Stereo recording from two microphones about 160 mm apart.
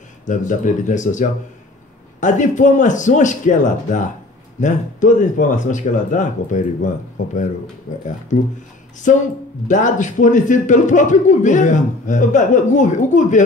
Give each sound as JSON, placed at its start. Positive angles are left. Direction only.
{"t": 0.3, "sound": "speech", "side_deg": 50}